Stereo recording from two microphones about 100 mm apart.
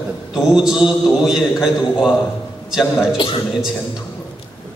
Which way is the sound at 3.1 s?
55° left (ahead or behind).